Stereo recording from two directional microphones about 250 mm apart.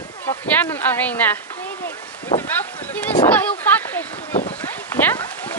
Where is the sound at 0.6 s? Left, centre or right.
Centre.